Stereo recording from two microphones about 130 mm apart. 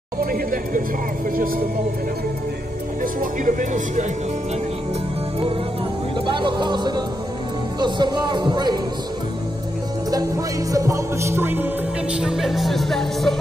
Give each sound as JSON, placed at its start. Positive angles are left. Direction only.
{"t": 0.3, "sound": "speech", "side_deg": -90}
{"t": 3.0, "sound": "speech", "side_deg": -90}
{"t": 6.2, "sound": "speech", "side_deg": -40}
{"t": 10.1, "sound": "music", "side_deg": -25}